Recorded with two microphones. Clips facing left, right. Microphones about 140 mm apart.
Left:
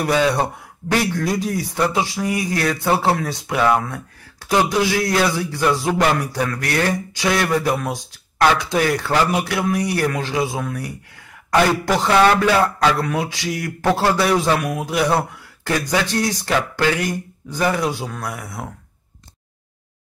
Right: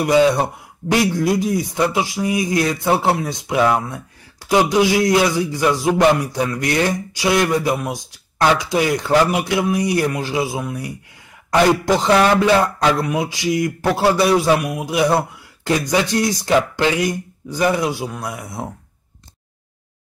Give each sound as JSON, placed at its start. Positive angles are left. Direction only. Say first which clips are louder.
{"t": 0.0, "sound": "speech", "louder": "right 4 dB", "side_deg": -15}
{"t": 11.7, "sound": "music", "louder": "right 2 dB", "side_deg": -15}
{"t": 13.0, "sound": "speech", "louder": "right 2 dB", "side_deg": -15}